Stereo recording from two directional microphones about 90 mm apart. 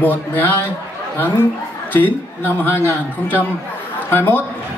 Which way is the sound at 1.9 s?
20° left (ahead or behind).